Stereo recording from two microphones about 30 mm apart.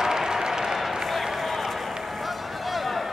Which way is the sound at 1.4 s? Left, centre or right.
Centre.